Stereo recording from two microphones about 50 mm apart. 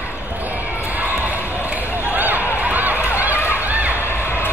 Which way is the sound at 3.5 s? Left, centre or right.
Right.